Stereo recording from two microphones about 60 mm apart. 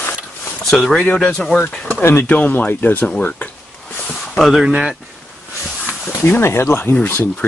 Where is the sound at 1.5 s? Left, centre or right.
Left.